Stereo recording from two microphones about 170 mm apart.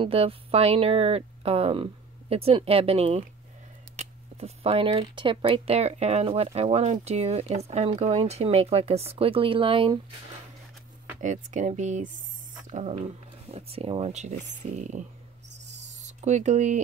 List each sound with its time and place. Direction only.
0.0 s speech: 35° right (ahead or behind)
11.1 s speech: 45° right (ahead or behind)